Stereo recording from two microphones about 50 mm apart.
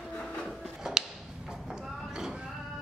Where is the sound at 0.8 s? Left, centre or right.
Centre.